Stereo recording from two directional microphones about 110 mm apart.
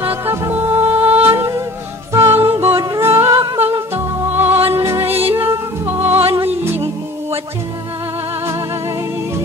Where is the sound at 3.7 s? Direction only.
20° right (ahead or behind).